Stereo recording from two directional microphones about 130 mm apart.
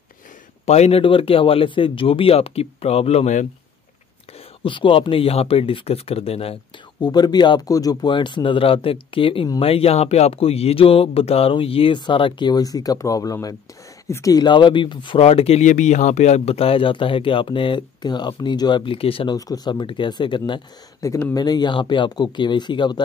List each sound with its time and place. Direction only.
0.7 s speech: 55° left (ahead or behind)
4.6 s speech: 40° left (ahead or behind)
7.0 s speech: 30° left (ahead or behind); by 15.6 s 50° left (ahead or behind)
15.6 s speech: 70° left (ahead or behind); by 19.3 s 45° left (ahead or behind)
19.3 s speech: 30° left (ahead or behind)
21.0 s speech: 25° left (ahead or behind)